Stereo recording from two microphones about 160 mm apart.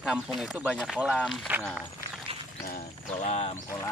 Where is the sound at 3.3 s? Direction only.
40° left (ahead or behind).